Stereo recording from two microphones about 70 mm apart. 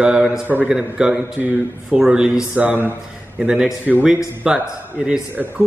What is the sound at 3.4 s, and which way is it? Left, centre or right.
A man's voice, centre.